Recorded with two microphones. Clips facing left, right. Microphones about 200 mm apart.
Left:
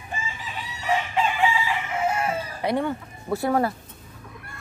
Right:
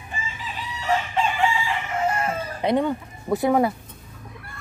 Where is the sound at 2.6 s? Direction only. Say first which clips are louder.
Right 4 dB; 20° right (ahead or behind).